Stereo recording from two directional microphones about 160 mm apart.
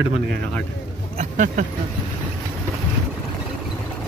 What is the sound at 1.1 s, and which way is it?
Speech, 55° right (ahead or behind).